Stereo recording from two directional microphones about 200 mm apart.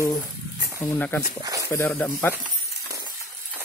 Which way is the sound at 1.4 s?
15° right (ahead or behind).